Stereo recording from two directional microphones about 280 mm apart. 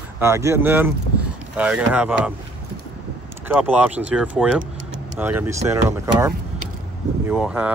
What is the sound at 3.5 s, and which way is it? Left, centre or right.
Speech, centre.